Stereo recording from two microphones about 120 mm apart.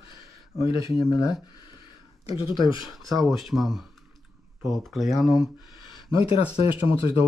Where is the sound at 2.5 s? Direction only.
40° left (ahead or behind).